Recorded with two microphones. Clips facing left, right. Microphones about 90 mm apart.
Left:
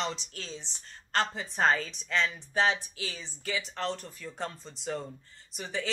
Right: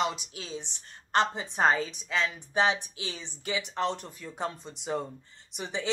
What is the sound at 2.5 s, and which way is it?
Speech, 20° right (ahead or behind).